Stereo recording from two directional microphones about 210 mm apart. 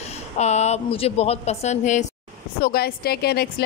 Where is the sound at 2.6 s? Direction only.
45° left (ahead or behind).